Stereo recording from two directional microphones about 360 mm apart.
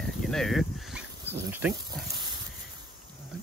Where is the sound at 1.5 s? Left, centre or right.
Centre.